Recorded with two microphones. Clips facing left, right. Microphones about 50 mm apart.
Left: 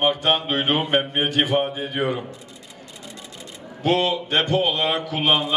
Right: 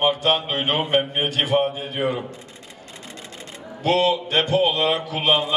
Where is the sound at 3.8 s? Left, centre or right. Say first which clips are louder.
Right 1 dB; centre.